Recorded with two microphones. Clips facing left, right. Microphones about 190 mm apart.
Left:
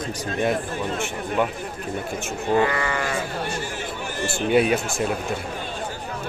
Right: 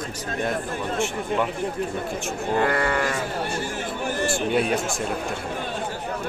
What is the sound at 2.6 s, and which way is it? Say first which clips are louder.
Speech: right 2 dB; 55° right (ahead or behind).